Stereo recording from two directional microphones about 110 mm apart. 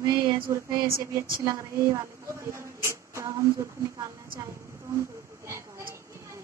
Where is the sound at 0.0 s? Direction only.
35° right (ahead or behind).